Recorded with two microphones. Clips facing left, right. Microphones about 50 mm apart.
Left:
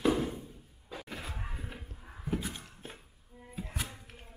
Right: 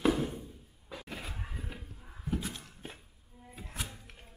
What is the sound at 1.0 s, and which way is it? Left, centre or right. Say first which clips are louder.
Music: even; centre.